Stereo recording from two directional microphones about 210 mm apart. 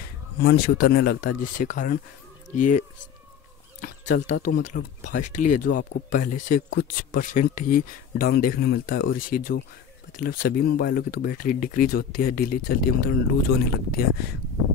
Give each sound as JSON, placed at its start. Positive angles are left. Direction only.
{"t": 0.4, "sound": "speech", "side_deg": 50}
{"t": 3.8, "sound": "speech", "side_deg": 40}